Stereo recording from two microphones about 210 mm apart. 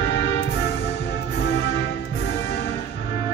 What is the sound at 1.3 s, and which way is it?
Music, 55° left (ahead or behind).